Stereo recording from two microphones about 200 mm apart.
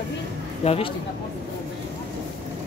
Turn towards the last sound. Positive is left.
turn(degrees=30)  # may be behind; listen again after turning